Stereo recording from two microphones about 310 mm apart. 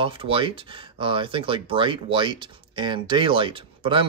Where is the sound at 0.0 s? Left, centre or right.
Centre.